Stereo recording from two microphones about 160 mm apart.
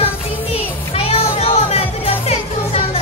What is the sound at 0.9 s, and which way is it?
Music, 40° left (ahead or behind).